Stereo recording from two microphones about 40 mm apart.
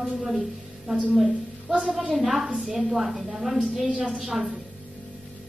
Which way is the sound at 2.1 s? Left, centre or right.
Centre.